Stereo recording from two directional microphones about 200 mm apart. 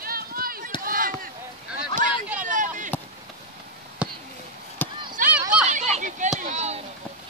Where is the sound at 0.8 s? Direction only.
45° right (ahead or behind).